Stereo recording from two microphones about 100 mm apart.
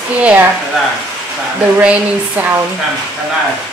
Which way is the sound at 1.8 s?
15° right (ahead or behind).